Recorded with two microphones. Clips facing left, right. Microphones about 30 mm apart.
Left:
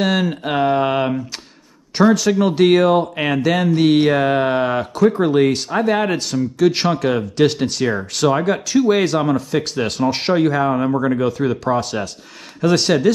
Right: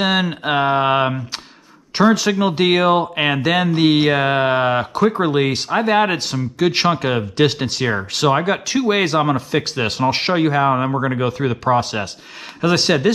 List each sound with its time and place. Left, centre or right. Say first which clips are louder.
0.0 s speech: even; right